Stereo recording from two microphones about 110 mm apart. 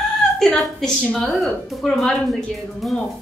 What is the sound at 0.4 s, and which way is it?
A woman's voice, 5° left (ahead or behind).